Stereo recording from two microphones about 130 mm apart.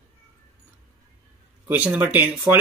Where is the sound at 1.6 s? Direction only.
10° right (ahead or behind).